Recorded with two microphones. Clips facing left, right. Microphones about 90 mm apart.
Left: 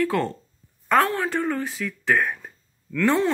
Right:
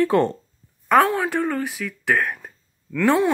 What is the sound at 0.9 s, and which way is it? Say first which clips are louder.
Speech: right 3 dB; 15° right (ahead or behind).